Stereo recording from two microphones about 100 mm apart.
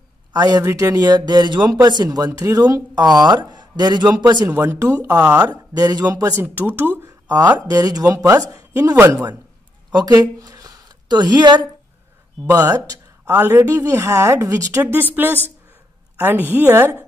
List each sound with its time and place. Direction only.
0.3 s speech: 40° right (ahead or behind)
4.5 s a woman's voice: 20° right (ahead or behind)
5.4 s speech: 40° right (ahead or behind)
6.4 s a woman's voice: 20° right (ahead or behind)
7.2 s speech: 40° right (ahead or behind)
9.8 s a woman's voice: 40° right (ahead or behind); by 16.9 s 20° right (ahead or behind)